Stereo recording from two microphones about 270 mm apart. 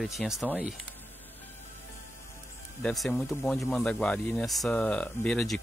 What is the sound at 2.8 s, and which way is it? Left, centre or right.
Speech, centre.